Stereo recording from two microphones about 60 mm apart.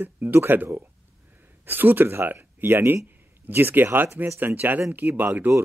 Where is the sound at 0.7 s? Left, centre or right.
Right.